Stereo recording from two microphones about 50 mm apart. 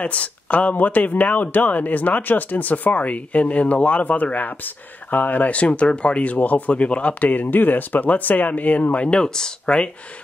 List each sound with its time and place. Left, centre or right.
0.0 s speech: left
9.1 s speech: centre